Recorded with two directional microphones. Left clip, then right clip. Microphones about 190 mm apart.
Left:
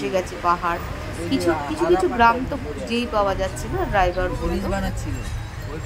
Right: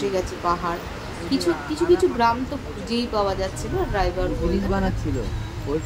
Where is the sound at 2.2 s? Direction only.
15° left (ahead or behind).